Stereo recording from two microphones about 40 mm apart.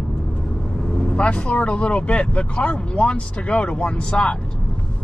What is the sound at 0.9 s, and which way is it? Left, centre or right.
Speech, left.